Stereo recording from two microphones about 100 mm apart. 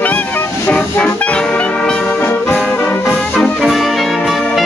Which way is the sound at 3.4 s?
Centre (ahead or behind).